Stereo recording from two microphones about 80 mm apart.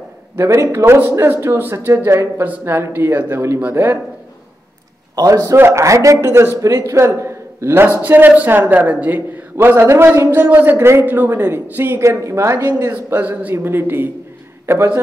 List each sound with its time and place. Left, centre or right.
0.4 s a man's voice: right
5.1 s a man's voice: right
5.6 s a man's voice: right
12.0 s a man's voice: right
12.9 s a man's voice: right